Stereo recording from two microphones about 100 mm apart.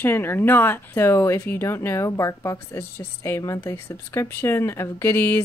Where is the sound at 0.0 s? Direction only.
20° left (ahead or behind).